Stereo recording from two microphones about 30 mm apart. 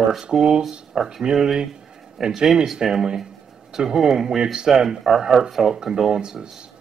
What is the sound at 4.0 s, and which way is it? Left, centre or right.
Speech, centre.